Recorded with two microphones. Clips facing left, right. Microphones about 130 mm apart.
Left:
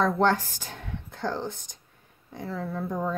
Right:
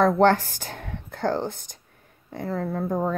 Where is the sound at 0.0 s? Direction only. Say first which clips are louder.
Right 5 dB; 60° right (ahead or behind).